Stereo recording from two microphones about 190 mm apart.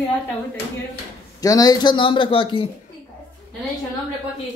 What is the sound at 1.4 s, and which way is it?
Speech, 20° left (ahead or behind).